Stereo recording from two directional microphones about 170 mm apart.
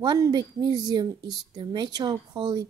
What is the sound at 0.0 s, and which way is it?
Speech, 25° right (ahead or behind).